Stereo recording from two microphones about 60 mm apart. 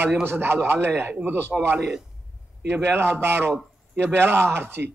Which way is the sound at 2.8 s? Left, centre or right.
Right.